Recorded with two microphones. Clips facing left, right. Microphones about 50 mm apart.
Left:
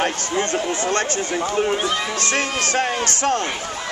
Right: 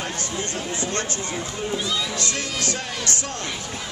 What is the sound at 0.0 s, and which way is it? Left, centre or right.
Speech, left.